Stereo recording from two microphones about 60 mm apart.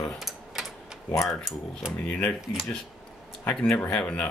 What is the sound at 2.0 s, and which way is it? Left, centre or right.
Speech, left.